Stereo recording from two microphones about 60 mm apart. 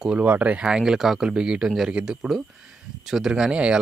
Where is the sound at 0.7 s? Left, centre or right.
Centre.